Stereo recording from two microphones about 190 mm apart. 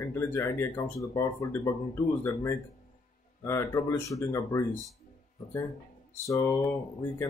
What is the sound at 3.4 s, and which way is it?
Speech, 15° left (ahead or behind).